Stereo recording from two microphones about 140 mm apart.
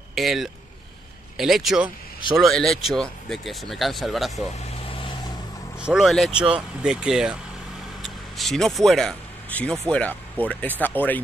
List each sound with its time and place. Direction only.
0.1 s speech: centre (ahead or behind)
4.8 s vehicle: 40° left (ahead or behind)
5.8 s speech: 5° right (ahead or behind); by 11.2 s 10° left (ahead or behind)